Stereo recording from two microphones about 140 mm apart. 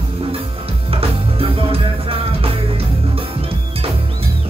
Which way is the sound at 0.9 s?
40° right (ahead or behind).